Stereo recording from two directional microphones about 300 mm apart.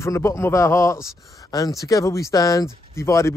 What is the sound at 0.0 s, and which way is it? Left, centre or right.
A man's voice, centre.